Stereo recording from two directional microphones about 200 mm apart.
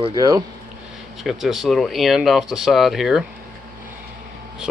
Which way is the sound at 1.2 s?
Centre (ahead or behind).